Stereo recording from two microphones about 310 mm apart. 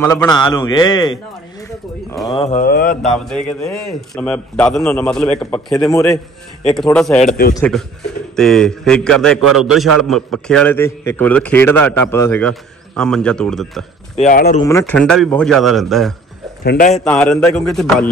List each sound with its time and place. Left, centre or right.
0.0 s a man's voice: centre
2.2 s mantra: centre
3.0 s a man's voice: centre
7.2 s mantra: left
7.5 s a man's voice: centre
14.1 s mantra: left
14.6 s a man's voice: centre
16.6 s mantra: left
16.9 s a man's voice: centre